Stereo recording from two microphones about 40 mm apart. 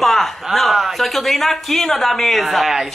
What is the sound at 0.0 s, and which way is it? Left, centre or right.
Speech, centre.